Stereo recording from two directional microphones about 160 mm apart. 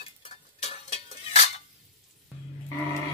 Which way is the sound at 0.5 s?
40° left (ahead or behind).